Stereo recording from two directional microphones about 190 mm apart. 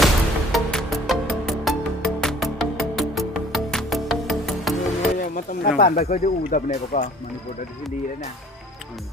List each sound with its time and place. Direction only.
0.0 s music: centre (ahead or behind)
2.2 s music: centre (ahead or behind)
5.2 s a sound: 45° left (ahead or behind)
5.8 s speech: 35° left (ahead or behind)